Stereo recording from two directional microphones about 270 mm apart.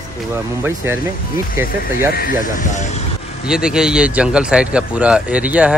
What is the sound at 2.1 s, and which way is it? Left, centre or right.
Speech, left.